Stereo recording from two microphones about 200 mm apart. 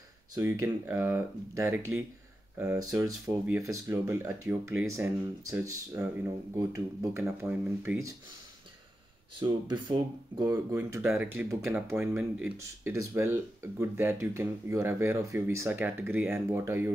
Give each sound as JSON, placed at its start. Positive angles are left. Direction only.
{"t": 0.3, "sound": "speech", "side_deg": -15}
{"t": 3.4, "sound": "speech", "side_deg": -15}
{"t": 9.4, "sound": "speech", "side_deg": -20}